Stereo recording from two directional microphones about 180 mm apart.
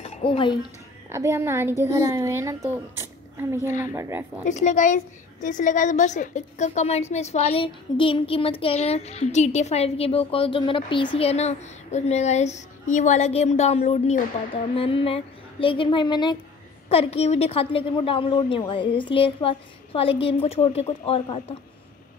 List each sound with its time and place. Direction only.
0.0 s speech: 35° left (ahead or behind)
1.1 s a child's voice: 15° right (ahead or behind)
4.5 s a woman's voice: 40° left (ahead or behind); by 16.3 s 25° left (ahead or behind)
16.9 s a woman's voice: 35° left (ahead or behind)